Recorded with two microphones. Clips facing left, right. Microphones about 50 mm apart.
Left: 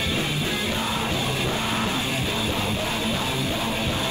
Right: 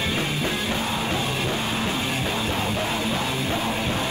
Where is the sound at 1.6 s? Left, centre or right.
Left.